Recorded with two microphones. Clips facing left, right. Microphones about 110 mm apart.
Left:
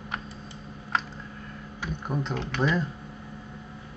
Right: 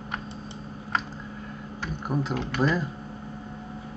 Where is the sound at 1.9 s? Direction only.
5° right (ahead or behind).